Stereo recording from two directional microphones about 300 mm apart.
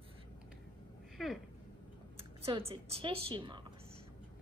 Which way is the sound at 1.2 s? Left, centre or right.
Centre.